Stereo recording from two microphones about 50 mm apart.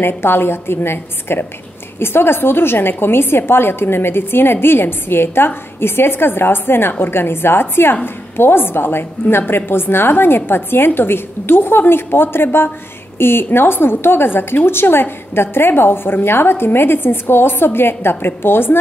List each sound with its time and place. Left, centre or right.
0.0 s a woman's voice: left